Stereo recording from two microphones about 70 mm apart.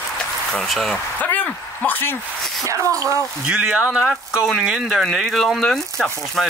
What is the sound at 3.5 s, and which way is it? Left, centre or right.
Speech, right.